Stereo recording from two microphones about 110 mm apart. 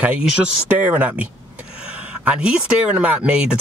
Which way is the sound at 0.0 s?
10° right (ahead or behind).